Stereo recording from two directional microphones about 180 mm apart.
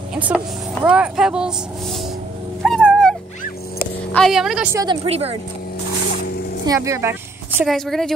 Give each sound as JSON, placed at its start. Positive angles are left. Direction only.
{"t": 0.1, "sound": "speech", "side_deg": -5}
{"t": 2.6, "sound": "dog", "side_deg": 0}
{"t": 4.1, "sound": "speech", "side_deg": 0}
{"t": 4.7, "sound": "a woman's voice", "side_deg": -30}
{"t": 6.6, "sound": "a sound", "side_deg": -20}
{"t": 7.6, "sound": "speech", "side_deg": 0}